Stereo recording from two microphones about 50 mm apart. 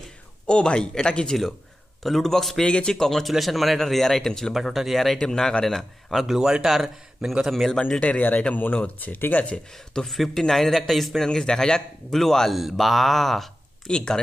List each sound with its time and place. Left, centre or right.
0.5 s a man's voice: centre
2.0 s a man's voice: centre
6.2 s a man's voice: centre
8.0 s a man's voice: left
9.9 s speech: centre
11.2 s a man's voice: centre
13.8 s a man's voice: centre